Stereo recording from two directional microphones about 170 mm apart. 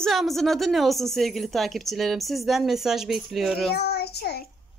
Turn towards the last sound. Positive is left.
turn(degrees=70)  # may be behind; listen again after turning